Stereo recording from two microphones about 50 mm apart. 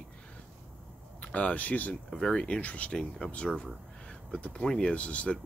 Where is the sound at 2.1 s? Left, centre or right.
Centre.